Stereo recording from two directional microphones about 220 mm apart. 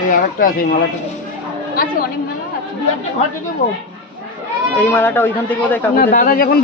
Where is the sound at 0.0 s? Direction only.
40° left (ahead or behind).